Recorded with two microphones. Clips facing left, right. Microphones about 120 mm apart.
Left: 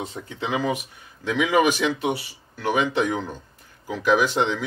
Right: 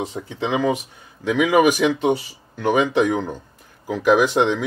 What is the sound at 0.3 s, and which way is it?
Speech, 20° right (ahead or behind).